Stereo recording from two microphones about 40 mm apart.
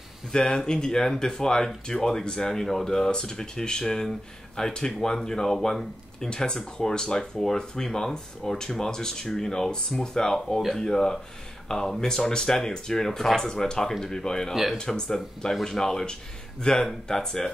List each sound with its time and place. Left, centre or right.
0.3 s speech: centre
6.3 s speech: centre
14.5 s speech: centre
14.8 s speech: centre